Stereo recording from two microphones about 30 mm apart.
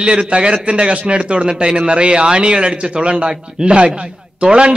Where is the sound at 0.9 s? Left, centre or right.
Right.